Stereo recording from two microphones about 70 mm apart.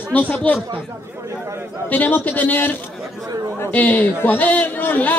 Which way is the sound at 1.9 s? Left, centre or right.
Left.